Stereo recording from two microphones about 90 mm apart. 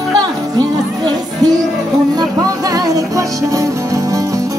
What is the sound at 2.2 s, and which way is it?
Music, 40° right (ahead or behind).